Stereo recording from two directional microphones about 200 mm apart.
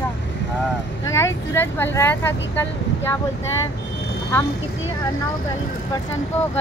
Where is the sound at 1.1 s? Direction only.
10° left (ahead or behind).